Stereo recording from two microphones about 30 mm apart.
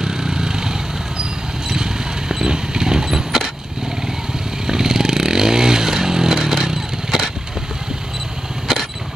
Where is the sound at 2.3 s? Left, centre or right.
Right.